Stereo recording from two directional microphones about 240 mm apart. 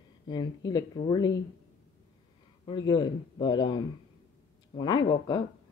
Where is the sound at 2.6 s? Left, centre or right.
Centre.